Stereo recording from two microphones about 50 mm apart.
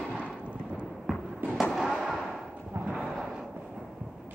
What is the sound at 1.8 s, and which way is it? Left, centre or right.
Fireworks, centre.